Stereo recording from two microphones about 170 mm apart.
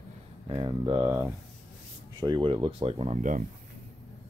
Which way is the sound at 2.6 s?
35° right (ahead or behind).